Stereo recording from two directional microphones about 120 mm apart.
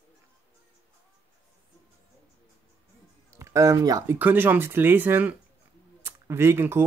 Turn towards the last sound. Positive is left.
turn(degrees=-20)  # may be behind; listen again after turning